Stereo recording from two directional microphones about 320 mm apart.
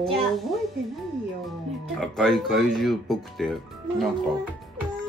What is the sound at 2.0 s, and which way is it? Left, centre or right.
Speech, centre.